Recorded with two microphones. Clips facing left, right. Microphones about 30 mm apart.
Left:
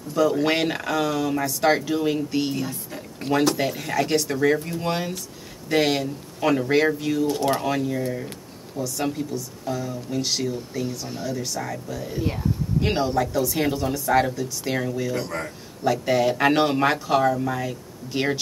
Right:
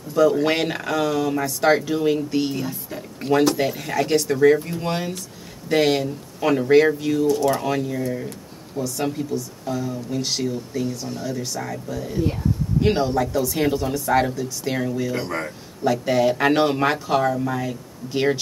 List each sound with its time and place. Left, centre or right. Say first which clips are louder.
0.1 s speech: right 3 dB; centre
15.1 s speech: right 2 dB; centre
15.8 s speech: right 2 dB; centre